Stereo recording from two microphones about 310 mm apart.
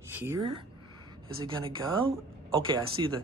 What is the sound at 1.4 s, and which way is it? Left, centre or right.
Speech, centre.